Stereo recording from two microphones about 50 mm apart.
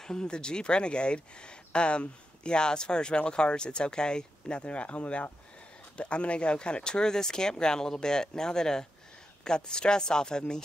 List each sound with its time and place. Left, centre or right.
0.0 s speech: centre